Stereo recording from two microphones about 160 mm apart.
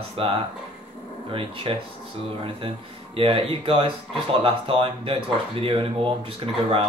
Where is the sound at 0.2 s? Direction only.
35° right (ahead or behind).